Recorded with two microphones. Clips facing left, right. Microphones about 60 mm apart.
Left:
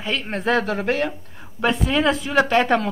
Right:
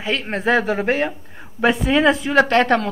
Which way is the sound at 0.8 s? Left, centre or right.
Right.